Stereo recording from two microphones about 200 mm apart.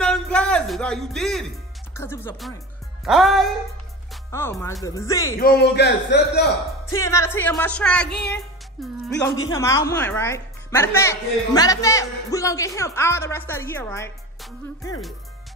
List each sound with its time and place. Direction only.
0.0 s music: 5° left (ahead or behind)
2.0 s speech: 10° left (ahead or behind)
3.1 s music: centre (ahead or behind)
4.3 s speech: 10° left (ahead or behind)
5.4 s a man's voice: 55° left (ahead or behind)
6.9 s speech: 15° left (ahead or behind)
8.8 s music: centre (ahead or behind)
9.5 s speech: 15° left (ahead or behind)